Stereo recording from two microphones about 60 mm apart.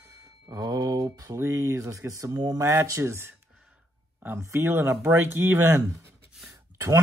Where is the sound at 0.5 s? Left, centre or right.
Right.